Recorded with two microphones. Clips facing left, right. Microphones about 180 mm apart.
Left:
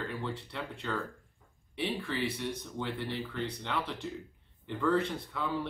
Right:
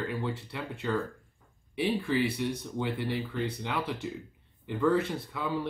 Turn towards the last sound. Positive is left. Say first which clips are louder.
# right 1 dB
turn(degrees=-5)  # may be behind; listen again after turning